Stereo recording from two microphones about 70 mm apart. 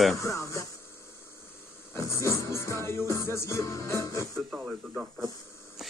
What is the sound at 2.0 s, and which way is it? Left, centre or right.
Music, left.